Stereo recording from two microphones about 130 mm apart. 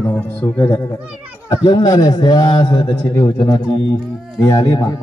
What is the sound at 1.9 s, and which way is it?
A man's voice, 30° left (ahead or behind).